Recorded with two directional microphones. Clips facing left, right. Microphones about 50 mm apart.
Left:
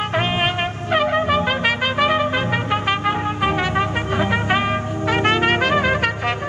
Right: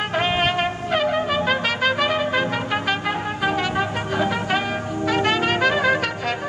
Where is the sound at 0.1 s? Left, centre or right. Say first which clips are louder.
Right 2 dB; centre.